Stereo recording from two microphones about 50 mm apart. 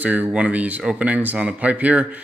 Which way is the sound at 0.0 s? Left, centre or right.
Right.